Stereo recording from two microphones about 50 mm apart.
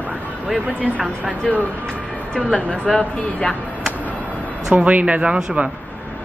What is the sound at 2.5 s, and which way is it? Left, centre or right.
Speech, left.